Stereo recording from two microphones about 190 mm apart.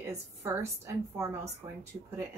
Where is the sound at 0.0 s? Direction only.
15° right (ahead or behind).